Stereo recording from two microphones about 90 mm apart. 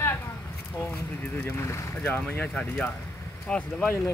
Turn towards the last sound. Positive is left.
turn(degrees=15)  # may be behind; listen again after turning